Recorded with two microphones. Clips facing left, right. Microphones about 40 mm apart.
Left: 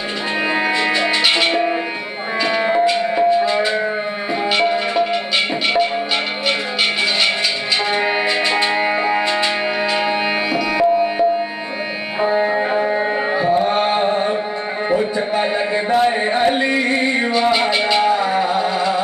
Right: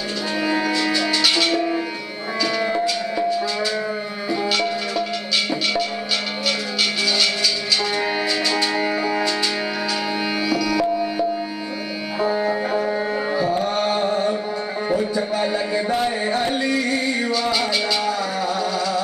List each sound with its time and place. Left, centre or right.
0.5 s music: left
7.9 s music: left
10.5 s tabla: left
12.2 s music: left
14.9 s a sound: left